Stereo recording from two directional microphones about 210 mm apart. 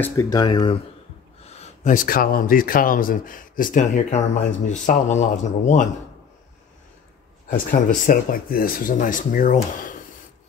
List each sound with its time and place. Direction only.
0.0 s speech: 15° left (ahead or behind)
1.4 s speech: 30° left (ahead or behind)
7.4 s speech: 40° left (ahead or behind)